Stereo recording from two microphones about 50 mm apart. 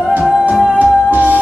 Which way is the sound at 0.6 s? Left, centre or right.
Right.